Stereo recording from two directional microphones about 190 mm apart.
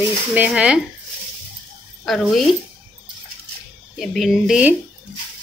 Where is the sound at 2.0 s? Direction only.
Centre (ahead or behind).